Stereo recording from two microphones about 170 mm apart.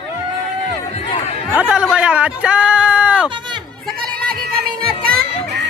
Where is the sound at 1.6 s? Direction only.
5° right (ahead or behind).